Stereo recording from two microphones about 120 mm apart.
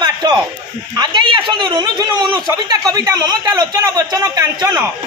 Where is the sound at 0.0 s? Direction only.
35° right (ahead or behind).